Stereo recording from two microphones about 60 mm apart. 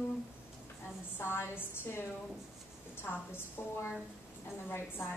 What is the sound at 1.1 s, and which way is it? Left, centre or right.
A woman's voice, left.